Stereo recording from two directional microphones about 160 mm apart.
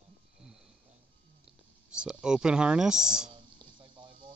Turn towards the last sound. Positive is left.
turn(degrees=-30)  # may be behind; listen again after turning